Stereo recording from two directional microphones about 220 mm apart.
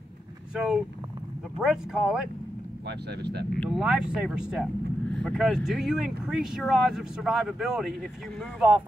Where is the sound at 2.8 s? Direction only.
50° right (ahead or behind).